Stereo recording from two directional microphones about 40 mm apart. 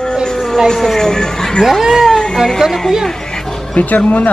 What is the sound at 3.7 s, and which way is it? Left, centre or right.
Speech, left.